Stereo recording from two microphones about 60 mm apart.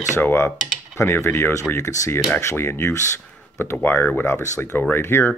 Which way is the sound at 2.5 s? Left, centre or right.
Left.